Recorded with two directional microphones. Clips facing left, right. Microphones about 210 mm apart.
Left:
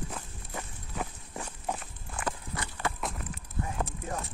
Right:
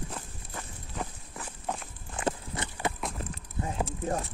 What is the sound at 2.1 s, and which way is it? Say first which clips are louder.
Clip-clop: right 4 dB; 25° right (ahead or behind).